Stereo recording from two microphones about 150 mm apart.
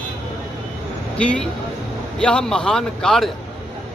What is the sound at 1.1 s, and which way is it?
A man's voice, 5° left (ahead or behind).